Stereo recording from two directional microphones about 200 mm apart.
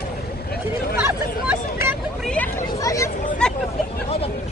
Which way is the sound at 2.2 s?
5° left (ahead or behind).